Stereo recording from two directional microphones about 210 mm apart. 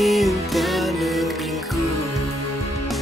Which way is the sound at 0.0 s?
Centre (ahead or behind).